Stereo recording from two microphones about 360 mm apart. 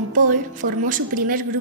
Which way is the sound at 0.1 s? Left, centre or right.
Right.